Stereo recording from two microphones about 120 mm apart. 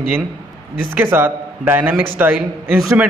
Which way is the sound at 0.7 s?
15° right (ahead or behind).